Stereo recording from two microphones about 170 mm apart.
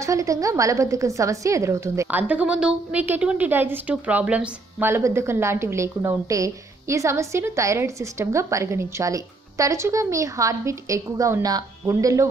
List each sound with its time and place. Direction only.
0.0 s a woman's voice: 20° right (ahead or behind)